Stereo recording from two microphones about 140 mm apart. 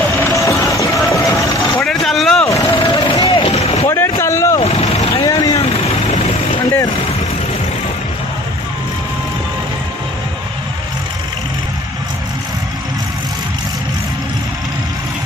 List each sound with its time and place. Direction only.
0.4 s music: 20° left (ahead or behind)
1.8 s vehicle: centre (ahead or behind)
2.4 s vehicle: 25° left (ahead or behind)
2.7 s vehicle: 35° left (ahead or behind)
3.9 s vehicle: 20° left (ahead or behind)
4.6 s vehicle: 45° left (ahead or behind)
5.2 s vehicle: 25° left (ahead or behind)